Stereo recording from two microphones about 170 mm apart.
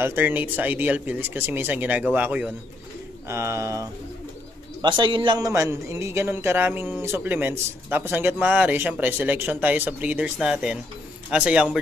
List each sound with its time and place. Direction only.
0.0 s a man's voice: 15° right (ahead or behind)
4.8 s a man's voice: 30° right (ahead or behind)
5.5 s a man's voice: 15° right (ahead or behind)